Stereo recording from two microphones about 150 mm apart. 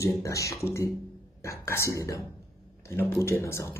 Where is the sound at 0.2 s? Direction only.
20° left (ahead or behind).